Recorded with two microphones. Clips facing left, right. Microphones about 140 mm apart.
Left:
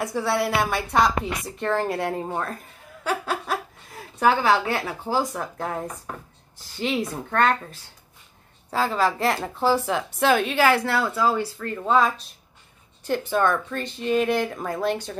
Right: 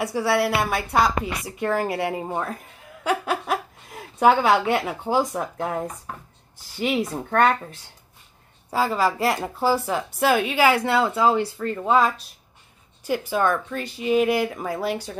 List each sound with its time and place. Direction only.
0.0 s a woman's voice: 5° right (ahead or behind)
3.0 s laughter: 15° right (ahead or behind)
4.2 s a woman's voice: 15° right (ahead or behind)
8.6 s a woman's voice: 10° right (ahead or behind)